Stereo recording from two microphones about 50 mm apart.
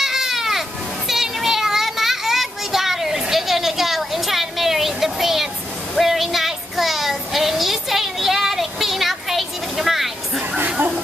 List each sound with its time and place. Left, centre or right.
0.0 s children playing: centre
5.9 s child singing: centre